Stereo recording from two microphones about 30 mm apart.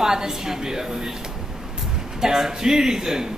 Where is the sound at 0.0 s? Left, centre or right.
Centre.